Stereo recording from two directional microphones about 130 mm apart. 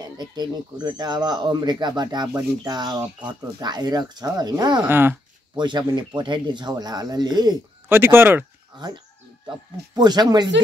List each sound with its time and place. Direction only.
0.2 s speech: 30° right (ahead or behind)
4.8 s speech: 15° right (ahead or behind)
5.6 s speech: 35° right (ahead or behind)
7.9 s speech: 20° right (ahead or behind)
8.7 s speech: 35° right (ahead or behind)